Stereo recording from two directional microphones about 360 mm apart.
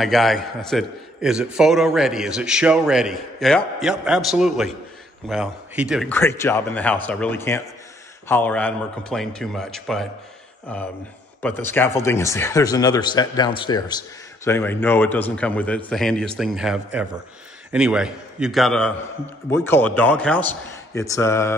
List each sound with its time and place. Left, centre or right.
0.0 s a man's voice: centre